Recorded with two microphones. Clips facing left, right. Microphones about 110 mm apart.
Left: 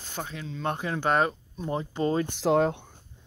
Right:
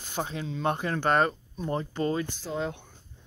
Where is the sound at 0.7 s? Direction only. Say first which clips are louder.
Left 1 dB; 5° left (ahead or behind).